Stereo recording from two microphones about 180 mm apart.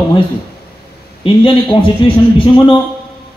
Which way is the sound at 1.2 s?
30° left (ahead or behind).